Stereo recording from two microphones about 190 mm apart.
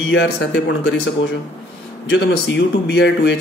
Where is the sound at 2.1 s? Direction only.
65° left (ahead or behind).